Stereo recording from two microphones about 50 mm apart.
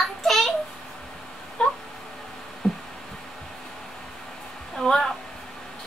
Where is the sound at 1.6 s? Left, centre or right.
Centre.